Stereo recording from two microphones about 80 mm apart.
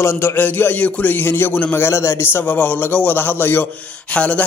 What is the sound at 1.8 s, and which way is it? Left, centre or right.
Speech, left.